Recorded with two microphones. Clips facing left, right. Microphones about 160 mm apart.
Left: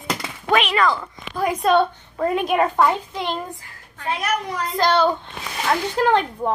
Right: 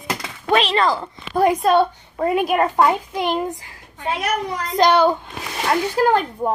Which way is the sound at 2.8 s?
15° right (ahead or behind).